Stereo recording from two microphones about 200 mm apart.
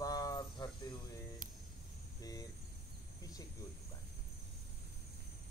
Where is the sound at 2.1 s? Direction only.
20° left (ahead or behind).